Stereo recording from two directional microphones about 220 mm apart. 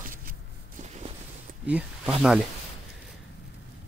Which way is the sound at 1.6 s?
5° right (ahead or behind).